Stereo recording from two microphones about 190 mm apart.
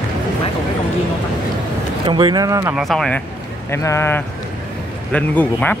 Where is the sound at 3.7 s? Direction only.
15° left (ahead or behind).